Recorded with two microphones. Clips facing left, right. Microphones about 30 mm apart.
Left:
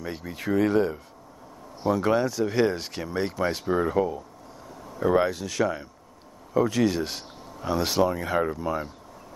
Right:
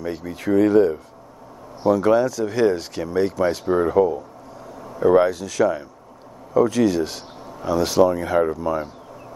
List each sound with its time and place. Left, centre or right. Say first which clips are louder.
0.0 s speech: right 6 dB; centre
3.6 s speech: right 7 dB; centre
8.1 s speech: right 6 dB; centre